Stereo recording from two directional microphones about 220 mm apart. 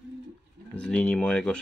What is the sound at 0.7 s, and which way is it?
Speech, 5° left (ahead or behind).